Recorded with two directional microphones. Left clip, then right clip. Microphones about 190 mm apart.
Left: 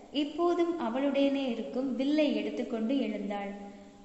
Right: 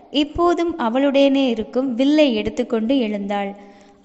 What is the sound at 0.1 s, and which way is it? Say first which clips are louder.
A man's voice: right 12 dB; 40° right (ahead or behind).